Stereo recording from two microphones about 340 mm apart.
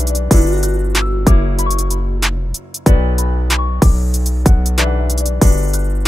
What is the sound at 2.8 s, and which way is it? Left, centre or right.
Music, centre.